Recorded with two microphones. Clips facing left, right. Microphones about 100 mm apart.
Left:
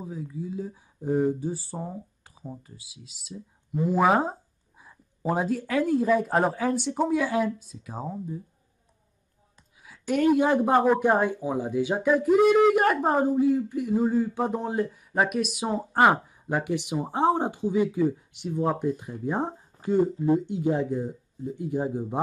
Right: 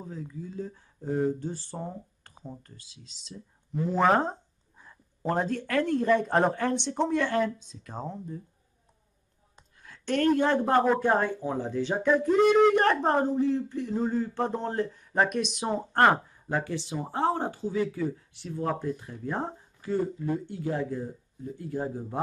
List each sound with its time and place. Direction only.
0.0 s speech: 10° left (ahead or behind)
9.8 s speech: 5° left (ahead or behind)